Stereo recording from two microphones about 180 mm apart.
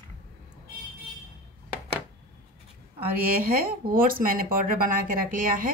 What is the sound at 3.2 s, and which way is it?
Speech, 55° right (ahead or behind).